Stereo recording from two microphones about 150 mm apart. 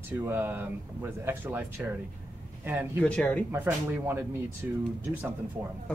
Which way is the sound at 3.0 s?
10° left (ahead or behind).